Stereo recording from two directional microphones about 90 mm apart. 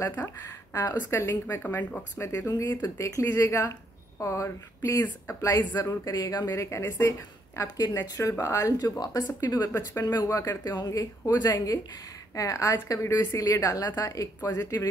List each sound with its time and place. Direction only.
0.7 s speech: 30° left (ahead or behind)
2.2 s a woman's voice: 30° left (ahead or behind)
5.7 s speech: 25° left (ahead or behind)
6.0 s a woman's voice: 40° left (ahead or behind)
10.9 s a woman's voice: 35° left (ahead or behind)
13.1 s a woman's voice: 30° left (ahead or behind)
14.5 s a woman's voice: 30° left (ahead or behind)